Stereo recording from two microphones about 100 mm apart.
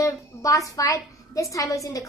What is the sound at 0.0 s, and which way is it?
A woman's voice, 35° left (ahead or behind).